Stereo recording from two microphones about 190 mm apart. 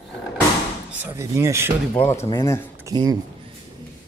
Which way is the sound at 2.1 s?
15° left (ahead or behind).